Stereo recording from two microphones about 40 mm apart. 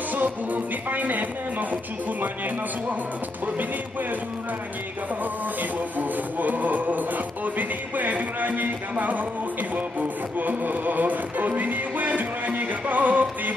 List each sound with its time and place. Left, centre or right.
0.1 s music: right
5.2 s music: right